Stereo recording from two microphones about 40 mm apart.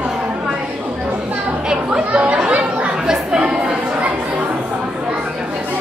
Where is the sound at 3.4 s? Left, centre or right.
Right.